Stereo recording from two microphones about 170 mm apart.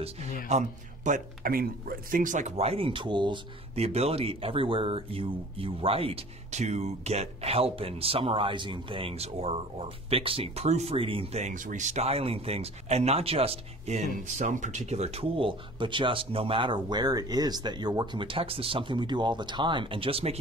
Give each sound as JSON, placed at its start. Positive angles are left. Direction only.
{"t": 0.5, "sound": "speech", "side_deg": -45}